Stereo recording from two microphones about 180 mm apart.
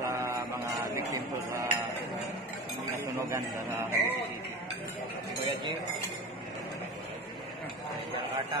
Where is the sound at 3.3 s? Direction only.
15° right (ahead or behind).